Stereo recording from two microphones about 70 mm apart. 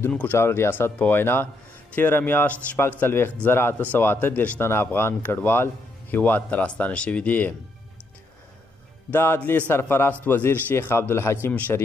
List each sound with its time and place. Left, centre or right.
0.2 s a man's voice: left
2.4 s a man's voice: centre
4.6 s speech: left
9.1 s a man's voice: left
11.4 s speech: left